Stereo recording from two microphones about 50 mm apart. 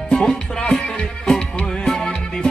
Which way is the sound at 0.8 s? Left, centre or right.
Centre.